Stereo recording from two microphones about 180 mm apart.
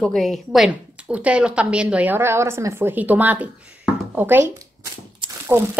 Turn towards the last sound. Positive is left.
turn(degrees=-15)  # may be behind; listen again after turning